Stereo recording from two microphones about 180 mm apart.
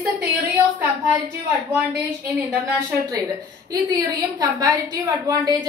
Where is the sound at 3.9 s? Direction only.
20° right (ahead or behind).